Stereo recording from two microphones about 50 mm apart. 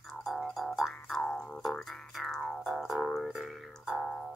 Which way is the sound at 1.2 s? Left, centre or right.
Left.